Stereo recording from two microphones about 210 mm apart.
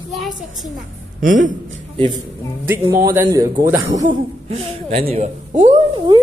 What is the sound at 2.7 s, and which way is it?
Speech, 15° right (ahead or behind).